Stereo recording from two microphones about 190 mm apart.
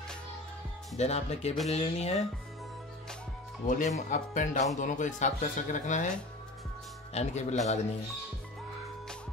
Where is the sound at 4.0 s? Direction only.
40° left (ahead or behind).